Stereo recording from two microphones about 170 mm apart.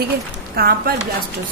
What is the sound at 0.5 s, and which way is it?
Speech, 60° right (ahead or behind).